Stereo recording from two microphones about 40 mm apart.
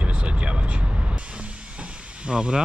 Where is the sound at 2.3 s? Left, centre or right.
Right.